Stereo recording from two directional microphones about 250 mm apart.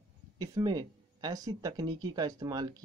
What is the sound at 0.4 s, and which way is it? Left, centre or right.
Speech, centre.